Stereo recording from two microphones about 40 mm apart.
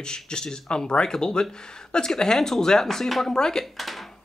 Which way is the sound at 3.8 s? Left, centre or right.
Centre.